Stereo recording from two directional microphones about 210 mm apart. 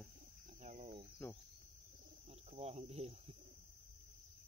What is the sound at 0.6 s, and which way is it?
Cricket, 35° right (ahead or behind).